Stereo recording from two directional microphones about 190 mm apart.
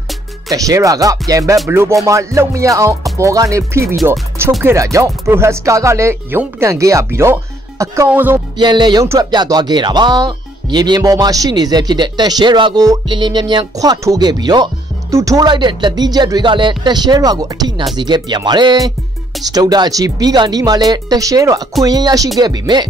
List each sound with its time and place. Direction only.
0.5 s speech: 15° right (ahead or behind)
4.0 s music: 15° right (ahead or behind)
4.6 s speech: 15° right (ahead or behind)
8.5 s speech: 20° right (ahead or behind)